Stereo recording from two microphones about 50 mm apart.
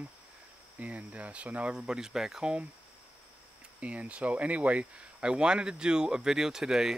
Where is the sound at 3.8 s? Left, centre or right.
Right.